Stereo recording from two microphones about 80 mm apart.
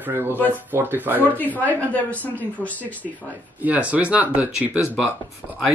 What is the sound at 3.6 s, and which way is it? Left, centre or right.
Speech, centre.